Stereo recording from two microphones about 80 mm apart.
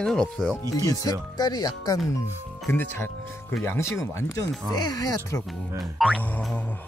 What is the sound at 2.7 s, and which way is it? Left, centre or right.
Speech, left.